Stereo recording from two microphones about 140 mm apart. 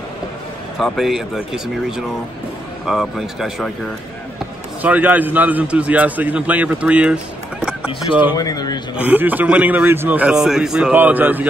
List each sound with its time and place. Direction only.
0.7 s speech: centre (ahead or behind)
4.8 s a man's voice: 10° right (ahead or behind)
8.4 s a man's voice: 25° left (ahead or behind)
9.0 s a man's voice: 10° right (ahead or behind)